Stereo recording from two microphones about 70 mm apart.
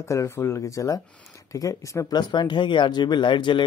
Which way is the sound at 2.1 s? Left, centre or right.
Left.